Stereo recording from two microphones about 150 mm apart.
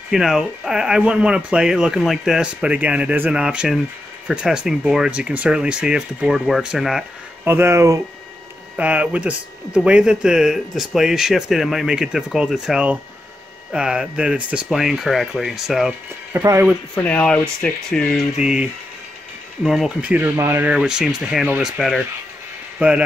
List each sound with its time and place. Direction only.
0.1 s speech: 5° right (ahead or behind)
7.4 s speech: 15° right (ahead or behind)
8.7 s speech: 10° right (ahead or behind)
16.3 s speech: 15° right (ahead or behind)
16.9 s speech: 10° left (ahead or behind)
18.4 s speech: 5° right (ahead or behind)